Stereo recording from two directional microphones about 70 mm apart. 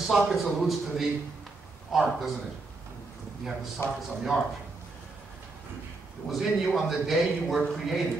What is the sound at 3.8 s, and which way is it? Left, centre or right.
Speech, left.